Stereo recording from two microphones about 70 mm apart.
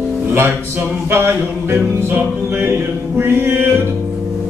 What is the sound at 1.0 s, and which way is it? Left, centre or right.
Music, right.